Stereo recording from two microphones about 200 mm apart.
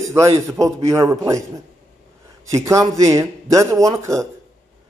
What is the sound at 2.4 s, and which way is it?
Speech, 15° right (ahead or behind).